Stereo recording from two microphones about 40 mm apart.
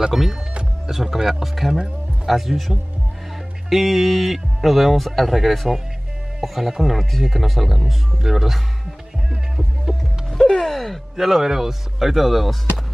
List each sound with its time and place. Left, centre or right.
0.0 s speech: centre
9.9 s music: centre
10.3 s music: centre
11.1 s speech: centre